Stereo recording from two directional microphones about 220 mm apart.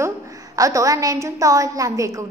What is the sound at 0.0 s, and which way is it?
A woman's voice, 15° right (ahead or behind).